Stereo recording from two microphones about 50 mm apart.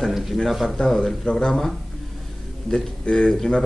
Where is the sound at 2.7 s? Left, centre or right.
Centre.